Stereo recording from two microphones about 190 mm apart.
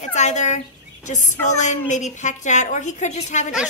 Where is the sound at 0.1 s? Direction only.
40° left (ahead or behind).